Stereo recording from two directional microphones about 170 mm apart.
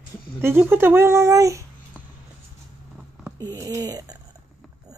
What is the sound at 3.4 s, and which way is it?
Speech, 20° right (ahead or behind).